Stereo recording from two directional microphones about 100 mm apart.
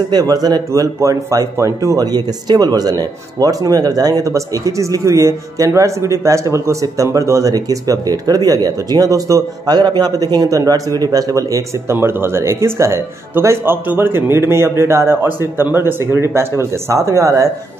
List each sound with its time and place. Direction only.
0.1 s a man's voice: 40° right (ahead or behind)